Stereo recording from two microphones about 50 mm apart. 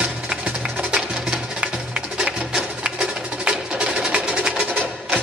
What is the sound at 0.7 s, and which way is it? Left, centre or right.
Music, centre.